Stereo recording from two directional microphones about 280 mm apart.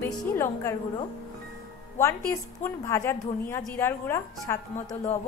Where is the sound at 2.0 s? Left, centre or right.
Centre.